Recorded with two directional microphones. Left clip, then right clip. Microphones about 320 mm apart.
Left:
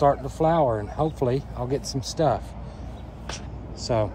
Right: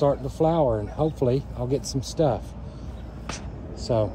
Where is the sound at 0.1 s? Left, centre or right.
Centre.